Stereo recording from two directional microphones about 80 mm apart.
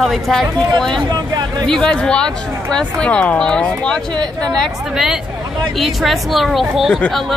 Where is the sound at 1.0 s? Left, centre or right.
Right.